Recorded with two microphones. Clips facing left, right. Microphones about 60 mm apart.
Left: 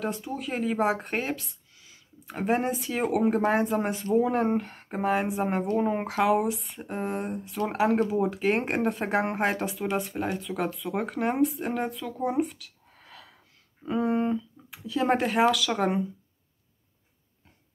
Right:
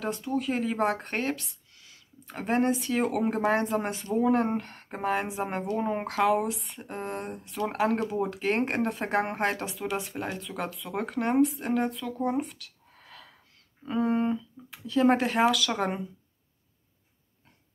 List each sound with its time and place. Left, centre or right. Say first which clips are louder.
0.0 s speech: right 2 dB; centre